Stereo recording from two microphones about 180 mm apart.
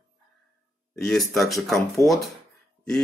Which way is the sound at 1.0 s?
Centre (ahead or behind).